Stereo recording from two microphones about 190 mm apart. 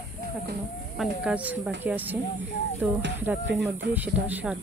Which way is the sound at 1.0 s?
5° right (ahead or behind).